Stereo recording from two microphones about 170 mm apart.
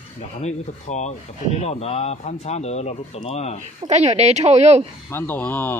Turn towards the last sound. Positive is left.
turn(degrees=10)  # may be behind; listen again after turning